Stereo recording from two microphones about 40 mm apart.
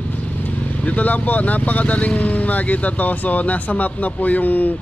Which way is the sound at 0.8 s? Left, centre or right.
Left.